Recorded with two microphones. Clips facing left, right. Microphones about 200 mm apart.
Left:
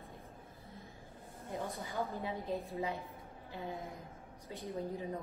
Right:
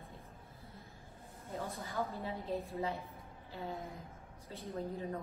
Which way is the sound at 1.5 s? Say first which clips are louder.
Left 1 dB; 15° left (ahead or behind).